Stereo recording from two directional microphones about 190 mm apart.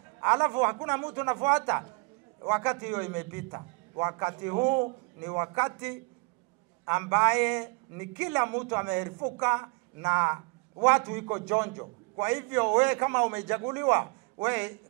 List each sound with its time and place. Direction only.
0.2 s a woman's voice: 15° right (ahead or behind)